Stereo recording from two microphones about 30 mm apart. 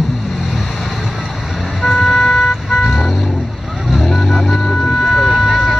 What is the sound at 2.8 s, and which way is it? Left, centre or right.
Vehicle, centre.